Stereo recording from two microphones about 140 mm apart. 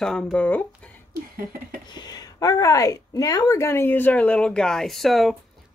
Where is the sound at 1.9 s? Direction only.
30° left (ahead or behind).